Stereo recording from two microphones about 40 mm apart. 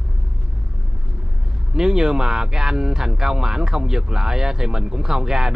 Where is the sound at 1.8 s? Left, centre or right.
Centre.